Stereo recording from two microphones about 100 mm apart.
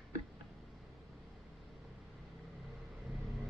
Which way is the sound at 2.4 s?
Centre (ahead or behind).